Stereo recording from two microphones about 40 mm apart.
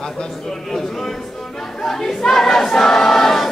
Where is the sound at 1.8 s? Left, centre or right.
Centre.